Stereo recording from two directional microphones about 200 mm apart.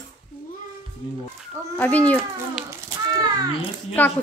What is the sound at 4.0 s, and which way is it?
Speech, 10° left (ahead or behind).